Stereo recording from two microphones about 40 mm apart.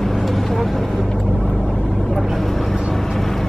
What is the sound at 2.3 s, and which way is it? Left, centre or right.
Vehicle, centre.